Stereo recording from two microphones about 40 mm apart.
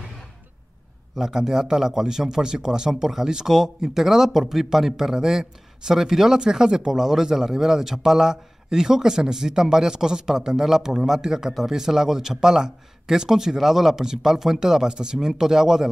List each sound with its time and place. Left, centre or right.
1.1 s a man's voice: centre